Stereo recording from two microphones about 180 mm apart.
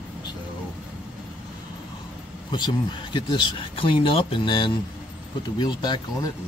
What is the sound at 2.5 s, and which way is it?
Speech, 25° left (ahead or behind).